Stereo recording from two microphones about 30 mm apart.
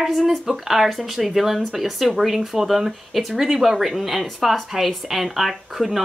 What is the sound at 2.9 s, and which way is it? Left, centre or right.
Speech, centre.